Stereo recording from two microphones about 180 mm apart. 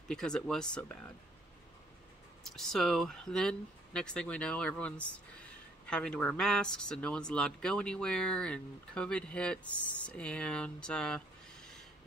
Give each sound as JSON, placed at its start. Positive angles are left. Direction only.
{"t": 0.1, "sound": "speech", "side_deg": 5}
{"t": 2.4, "sound": "speech", "side_deg": 0}